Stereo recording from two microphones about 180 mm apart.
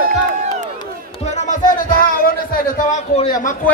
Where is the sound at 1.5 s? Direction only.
45° left (ahead or behind).